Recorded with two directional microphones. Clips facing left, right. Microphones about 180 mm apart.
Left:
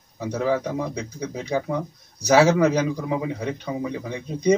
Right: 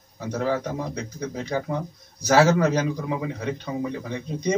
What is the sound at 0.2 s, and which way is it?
A man's voice, 10° left (ahead or behind).